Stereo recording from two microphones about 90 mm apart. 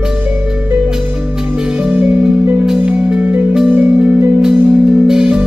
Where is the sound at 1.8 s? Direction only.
15° right (ahead or behind).